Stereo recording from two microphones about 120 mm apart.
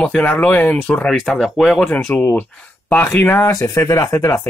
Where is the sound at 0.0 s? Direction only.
10° left (ahead or behind).